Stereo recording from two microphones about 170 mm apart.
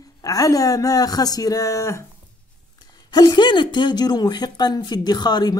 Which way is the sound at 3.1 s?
25° left (ahead or behind).